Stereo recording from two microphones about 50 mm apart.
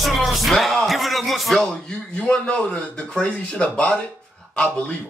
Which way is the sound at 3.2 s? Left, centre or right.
Left.